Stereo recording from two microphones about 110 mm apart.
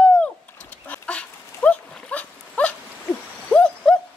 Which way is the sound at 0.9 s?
10° left (ahead or behind).